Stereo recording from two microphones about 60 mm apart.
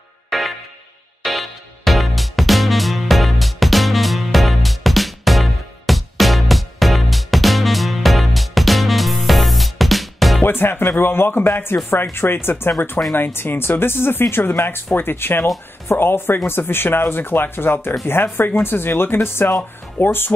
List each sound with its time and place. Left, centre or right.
0.3 s music: centre
10.4 s speech: left